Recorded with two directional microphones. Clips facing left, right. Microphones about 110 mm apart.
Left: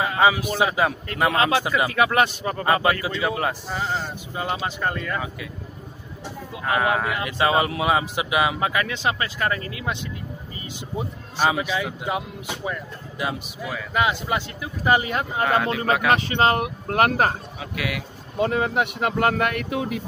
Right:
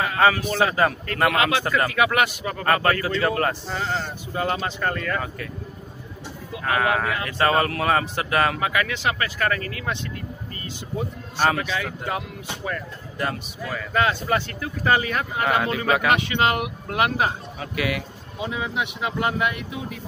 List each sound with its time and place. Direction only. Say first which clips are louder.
0.0 s a man's voice: even; 15° left (ahead or behind)
1.3 s speech: left 1 dB; 30° left (ahead or behind)
2.6 s speech: even; 15° left (ahead or behind)
6.5 s speech: even; 20° left (ahead or behind)
8.5 s speech: even; 25° left (ahead or behind)
15.4 s speech: left 1 dB; centre (ahead or behind)
16.2 s speech: left 2 dB; 35° left (ahead or behind)
17.6 s speech: right 3 dB; centre (ahead or behind)
18.4 s speech: left 6 dB; 55° left (ahead or behind)